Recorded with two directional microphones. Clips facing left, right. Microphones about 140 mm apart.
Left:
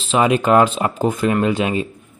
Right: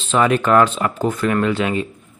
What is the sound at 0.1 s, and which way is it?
A man's voice, 15° left (ahead or behind).